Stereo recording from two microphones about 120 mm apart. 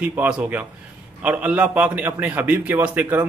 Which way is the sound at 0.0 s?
15° right (ahead or behind).